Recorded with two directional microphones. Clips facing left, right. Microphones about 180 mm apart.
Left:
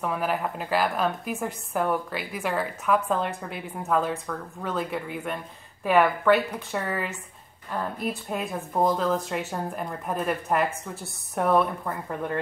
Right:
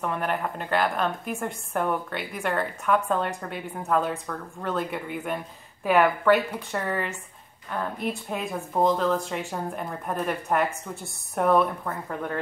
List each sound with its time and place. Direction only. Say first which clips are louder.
0.0 s a woman's voice: left 1 dB; 5° left (ahead or behind)